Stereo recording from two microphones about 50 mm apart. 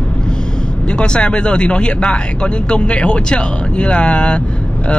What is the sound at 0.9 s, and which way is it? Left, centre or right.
Speech, left.